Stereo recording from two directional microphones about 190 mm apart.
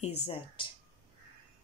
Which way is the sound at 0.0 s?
30° left (ahead or behind).